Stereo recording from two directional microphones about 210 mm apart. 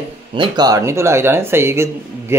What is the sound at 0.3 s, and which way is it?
Speech, 20° right (ahead or behind).